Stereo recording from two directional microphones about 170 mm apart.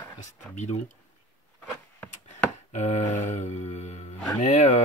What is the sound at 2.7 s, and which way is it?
Mantra, 40° left (ahead or behind).